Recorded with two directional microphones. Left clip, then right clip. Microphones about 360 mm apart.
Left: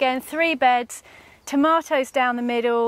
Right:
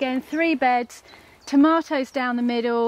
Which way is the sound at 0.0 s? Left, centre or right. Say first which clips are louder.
Left 2 dB; left.